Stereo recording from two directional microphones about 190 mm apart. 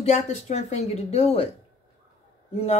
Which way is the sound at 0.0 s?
35° left (ahead or behind).